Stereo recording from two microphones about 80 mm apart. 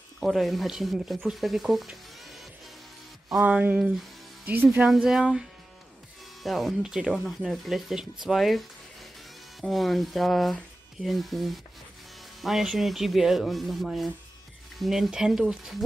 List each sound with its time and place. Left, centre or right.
0.2 s speech: centre
3.3 s speech: centre
6.4 s speech: centre